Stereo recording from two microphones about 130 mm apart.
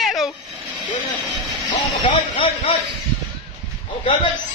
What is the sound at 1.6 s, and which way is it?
Speech, 40° left (ahead or behind).